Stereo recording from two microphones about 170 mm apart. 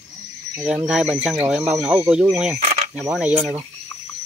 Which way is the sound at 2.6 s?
45° right (ahead or behind).